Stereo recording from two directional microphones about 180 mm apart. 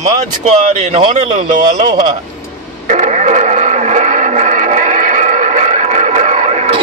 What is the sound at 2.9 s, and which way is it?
Radio, 40° right (ahead or behind).